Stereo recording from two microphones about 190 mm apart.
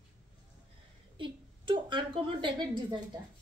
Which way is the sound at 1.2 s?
25° right (ahead or behind).